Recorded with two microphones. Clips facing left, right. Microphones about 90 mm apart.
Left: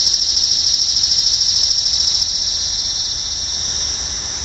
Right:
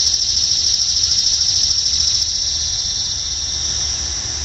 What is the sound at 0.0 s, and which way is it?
Cricket, 15° left (ahead or behind).